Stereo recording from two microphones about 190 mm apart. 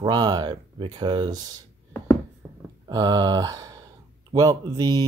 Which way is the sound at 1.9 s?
10° left (ahead or behind).